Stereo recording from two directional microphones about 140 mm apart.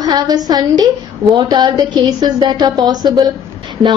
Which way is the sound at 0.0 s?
30° right (ahead or behind).